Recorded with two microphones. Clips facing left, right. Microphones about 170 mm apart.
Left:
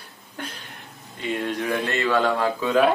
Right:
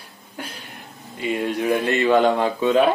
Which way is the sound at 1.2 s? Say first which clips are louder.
Right 4 dB; 10° right (ahead or behind).